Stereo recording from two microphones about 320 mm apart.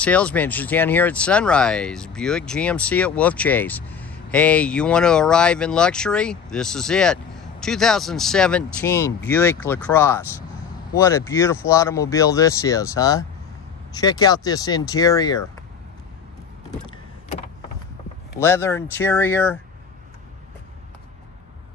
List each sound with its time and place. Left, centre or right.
0.0 s speech: centre
16.8 s vehicle: centre
18.4 s speech: centre